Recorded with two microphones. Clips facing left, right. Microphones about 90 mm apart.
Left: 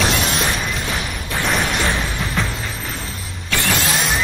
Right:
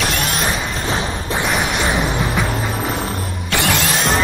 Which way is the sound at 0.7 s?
35° right (ahead or behind).